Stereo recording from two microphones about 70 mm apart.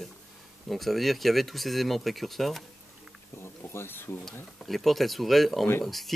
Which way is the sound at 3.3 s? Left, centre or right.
Left.